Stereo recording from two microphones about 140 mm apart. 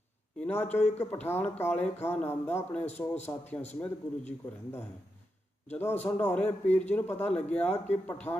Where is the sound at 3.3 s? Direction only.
25° left (ahead or behind).